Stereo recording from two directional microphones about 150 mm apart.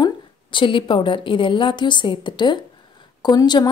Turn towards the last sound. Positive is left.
turn(degrees=30)  # may be behind; listen again after turning